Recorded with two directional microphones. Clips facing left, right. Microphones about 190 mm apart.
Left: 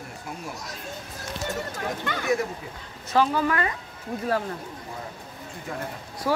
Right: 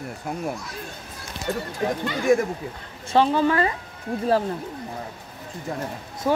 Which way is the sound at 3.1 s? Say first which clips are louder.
Right 3 dB; 25° right (ahead or behind).